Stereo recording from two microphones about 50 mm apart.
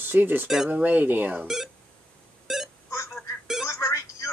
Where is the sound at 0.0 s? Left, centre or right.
Right.